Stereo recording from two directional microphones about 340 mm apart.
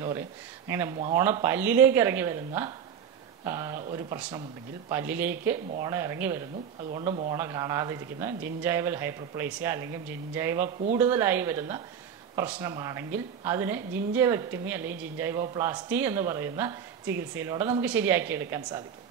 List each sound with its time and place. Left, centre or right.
0.7 s a woman's voice: centre
0.9 s a woman's voice: centre
1.2 s a woman's voice: centre
6.9 s a woman's voice: centre